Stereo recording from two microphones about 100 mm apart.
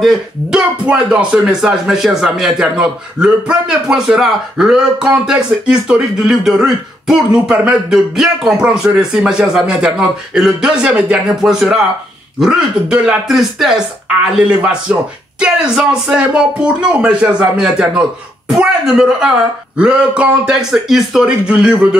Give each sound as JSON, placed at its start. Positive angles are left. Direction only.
{"t": 0.0, "sound": "speech", "side_deg": -10}